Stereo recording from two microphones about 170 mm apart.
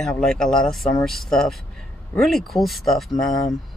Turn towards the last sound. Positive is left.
turn(degrees=0)  # may be behind; listen again after turning